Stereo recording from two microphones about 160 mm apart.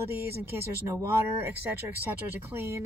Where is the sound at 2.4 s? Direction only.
15° right (ahead or behind).